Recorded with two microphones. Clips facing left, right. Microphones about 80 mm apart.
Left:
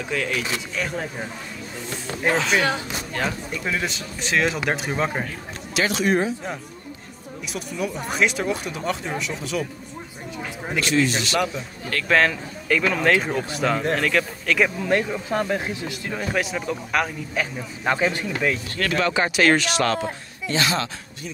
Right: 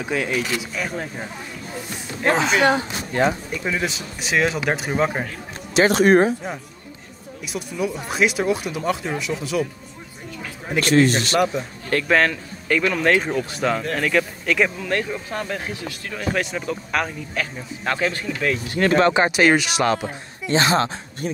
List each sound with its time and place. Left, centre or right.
0.1 s speech: centre
2.3 s speech: centre
3.6 s speech: centre
5.9 s a man's voice: right
7.7 s speech: centre
10.8 s a man's voice: right
12.1 s speech: centre
14.8 s speech: centre
16.3 s speech: centre
17.4 s speech: centre
18.9 s speech: right
19.4 s speech: centre
20.4 s speech: right